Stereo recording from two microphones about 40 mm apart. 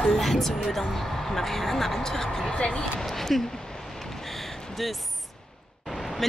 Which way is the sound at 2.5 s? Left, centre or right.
Left.